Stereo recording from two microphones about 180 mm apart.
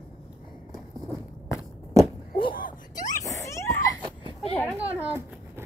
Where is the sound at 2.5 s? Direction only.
50° left (ahead or behind).